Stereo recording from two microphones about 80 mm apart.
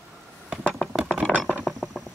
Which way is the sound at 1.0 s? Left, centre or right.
Centre.